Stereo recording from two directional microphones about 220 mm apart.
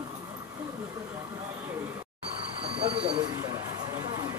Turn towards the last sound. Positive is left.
turn(degrees=-20)  # may be behind; listen again after turning